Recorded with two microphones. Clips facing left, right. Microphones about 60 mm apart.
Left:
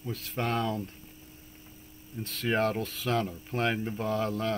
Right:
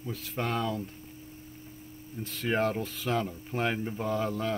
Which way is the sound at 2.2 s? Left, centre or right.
Centre.